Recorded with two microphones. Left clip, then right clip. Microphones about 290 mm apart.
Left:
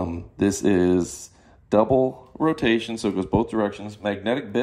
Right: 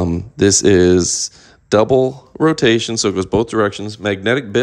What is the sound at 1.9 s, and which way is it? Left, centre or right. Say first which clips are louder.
Speech: right 6 dB; left.